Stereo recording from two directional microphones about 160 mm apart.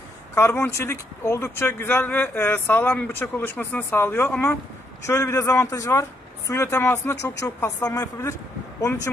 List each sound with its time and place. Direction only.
0.3 s a man's voice: 15° left (ahead or behind)